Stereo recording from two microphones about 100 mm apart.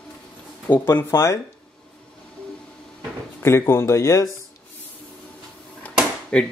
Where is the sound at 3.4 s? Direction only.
25° left (ahead or behind).